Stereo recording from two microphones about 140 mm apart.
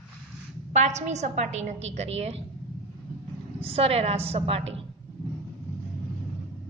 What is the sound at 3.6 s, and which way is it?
A woman's voice, 45° right (ahead or behind).